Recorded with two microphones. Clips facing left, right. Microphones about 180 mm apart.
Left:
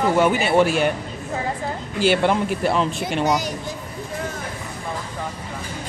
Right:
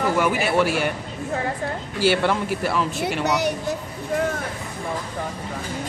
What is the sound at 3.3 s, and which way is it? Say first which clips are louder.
Speech: even; 65° right (ahead or behind).